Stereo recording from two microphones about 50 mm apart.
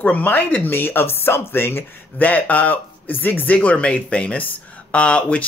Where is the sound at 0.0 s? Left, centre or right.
Left.